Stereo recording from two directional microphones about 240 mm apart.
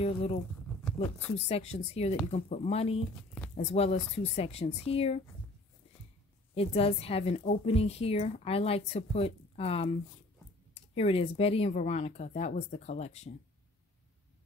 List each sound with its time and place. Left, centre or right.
0.0 s a woman's voice: left
6.5 s a woman's voice: left